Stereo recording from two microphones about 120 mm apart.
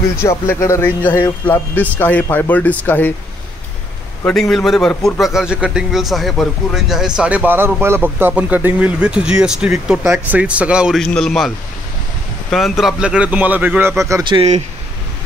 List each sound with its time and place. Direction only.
0.2 s speech: 20° left (ahead or behind)
4.3 s a man's voice: 5° left (ahead or behind)
11.0 s a man's voice: 5° left (ahead or behind); by 13.9 s 15° right (ahead or behind)
14.3 s speech: 30° right (ahead or behind)